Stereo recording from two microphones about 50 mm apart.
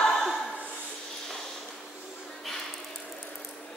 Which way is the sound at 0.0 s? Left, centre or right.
Centre.